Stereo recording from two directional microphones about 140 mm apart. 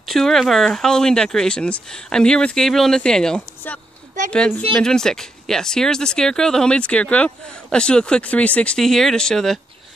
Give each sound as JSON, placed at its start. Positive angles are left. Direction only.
{"t": 0.0, "sound": "speech", "side_deg": 0}
{"t": 4.2, "sound": "a sound", "side_deg": -65}
{"t": 4.7, "sound": "speech", "side_deg": 5}